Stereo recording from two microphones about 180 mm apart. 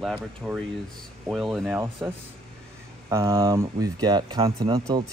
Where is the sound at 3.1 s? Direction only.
15° right (ahead or behind).